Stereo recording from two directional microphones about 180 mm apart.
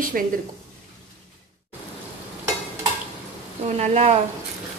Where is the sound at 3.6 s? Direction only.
40° right (ahead or behind).